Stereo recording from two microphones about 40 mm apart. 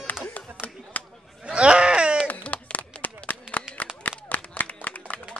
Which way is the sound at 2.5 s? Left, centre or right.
Left.